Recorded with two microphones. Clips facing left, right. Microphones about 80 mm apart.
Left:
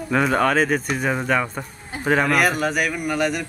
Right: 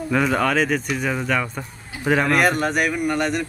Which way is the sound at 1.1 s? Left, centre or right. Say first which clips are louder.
Left 2 dB; centre.